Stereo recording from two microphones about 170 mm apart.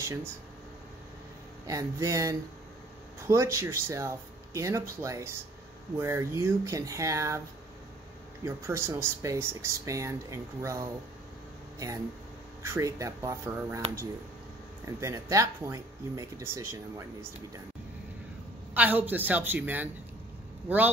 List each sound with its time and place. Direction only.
0.0 s speech: 15° right (ahead or behind)
1.7 s speech: 20° right (ahead or behind)
8.5 s speech: 15° right (ahead or behind)
12.6 s speech: 15° right (ahead or behind)
15.0 s speech: 15° right (ahead or behind)
18.7 s speech: 10° right (ahead or behind)